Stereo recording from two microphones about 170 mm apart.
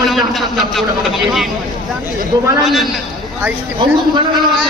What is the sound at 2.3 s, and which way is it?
Speech, 25° right (ahead or behind).